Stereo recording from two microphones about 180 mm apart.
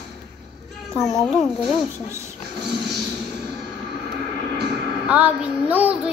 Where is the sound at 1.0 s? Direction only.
Centre (ahead or behind).